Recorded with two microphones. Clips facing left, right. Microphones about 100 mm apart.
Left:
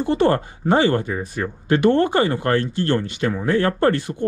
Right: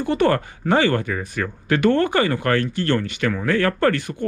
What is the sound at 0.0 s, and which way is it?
Speech, 20° left (ahead or behind).